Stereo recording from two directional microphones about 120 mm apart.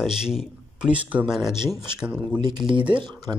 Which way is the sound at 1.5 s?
35° right (ahead or behind).